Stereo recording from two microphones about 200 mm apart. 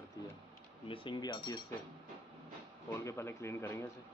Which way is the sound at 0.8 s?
25° left (ahead or behind).